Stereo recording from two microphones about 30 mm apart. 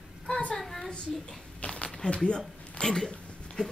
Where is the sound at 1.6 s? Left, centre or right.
Left.